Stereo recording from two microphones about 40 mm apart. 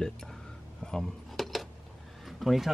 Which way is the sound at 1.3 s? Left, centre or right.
Centre.